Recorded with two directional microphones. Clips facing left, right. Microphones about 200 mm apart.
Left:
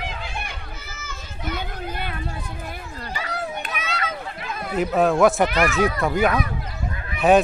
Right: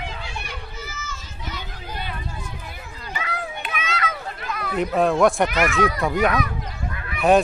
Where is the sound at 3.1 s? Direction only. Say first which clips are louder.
Left 1 dB; 40° left (ahead or behind).